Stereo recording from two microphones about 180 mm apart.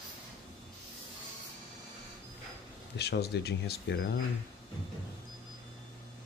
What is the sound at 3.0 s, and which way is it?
Speech, 65° left (ahead or behind).